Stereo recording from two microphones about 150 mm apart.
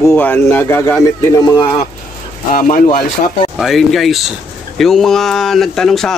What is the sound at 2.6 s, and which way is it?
Speech, 65° left (ahead or behind).